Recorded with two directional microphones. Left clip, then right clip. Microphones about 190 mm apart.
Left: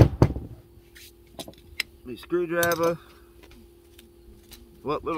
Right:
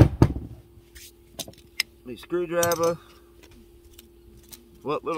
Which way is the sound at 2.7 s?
Centre (ahead or behind).